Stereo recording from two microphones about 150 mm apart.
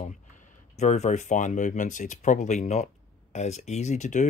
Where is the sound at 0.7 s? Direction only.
50° left (ahead or behind).